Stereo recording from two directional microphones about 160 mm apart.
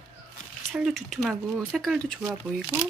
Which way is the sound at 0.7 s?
Centre (ahead or behind).